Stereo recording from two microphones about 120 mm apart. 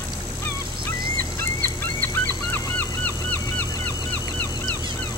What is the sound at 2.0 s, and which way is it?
Goose, 15° left (ahead or behind).